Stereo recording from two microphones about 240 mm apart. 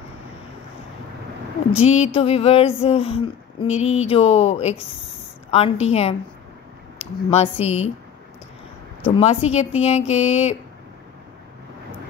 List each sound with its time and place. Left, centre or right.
1.7 s speech: left
7.2 s speech: left
9.2 s speech: left